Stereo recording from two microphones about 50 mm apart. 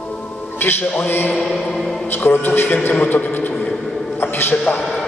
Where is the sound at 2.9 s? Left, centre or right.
Left.